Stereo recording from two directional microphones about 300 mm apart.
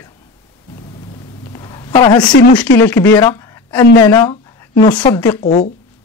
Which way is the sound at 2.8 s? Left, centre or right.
Centre.